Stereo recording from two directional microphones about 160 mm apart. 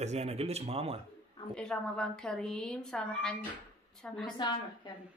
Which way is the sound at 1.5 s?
5° left (ahead or behind).